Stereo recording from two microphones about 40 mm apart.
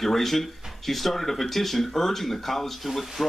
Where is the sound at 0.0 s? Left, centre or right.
Centre.